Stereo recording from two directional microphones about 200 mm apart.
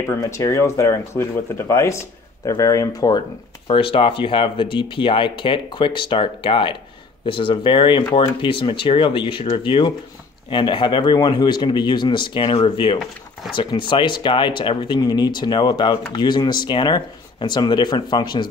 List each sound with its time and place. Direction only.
0.1 s speech: 15° left (ahead or behind)